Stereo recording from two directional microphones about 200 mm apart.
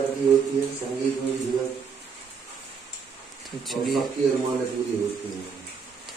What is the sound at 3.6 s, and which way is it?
Speech, centre (ahead or behind).